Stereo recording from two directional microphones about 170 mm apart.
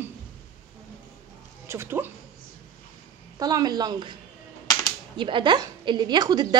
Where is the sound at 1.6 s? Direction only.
15° right (ahead or behind).